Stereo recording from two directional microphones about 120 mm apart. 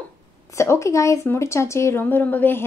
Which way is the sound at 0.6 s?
25° left (ahead or behind).